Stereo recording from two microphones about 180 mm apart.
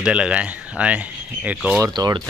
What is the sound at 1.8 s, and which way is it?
Speech, 20° right (ahead or behind).